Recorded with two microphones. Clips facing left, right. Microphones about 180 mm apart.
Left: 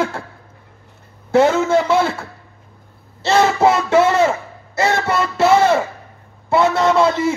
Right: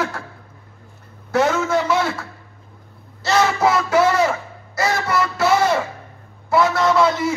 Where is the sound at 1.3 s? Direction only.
25° left (ahead or behind).